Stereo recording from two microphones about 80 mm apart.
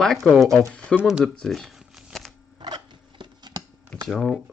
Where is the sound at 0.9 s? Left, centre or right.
Centre.